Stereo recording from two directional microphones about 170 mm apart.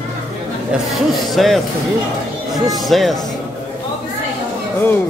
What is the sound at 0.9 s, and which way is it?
Speech, centre (ahead or behind).